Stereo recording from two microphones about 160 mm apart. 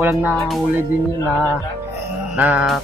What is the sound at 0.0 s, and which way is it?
Speech, 10° right (ahead or behind).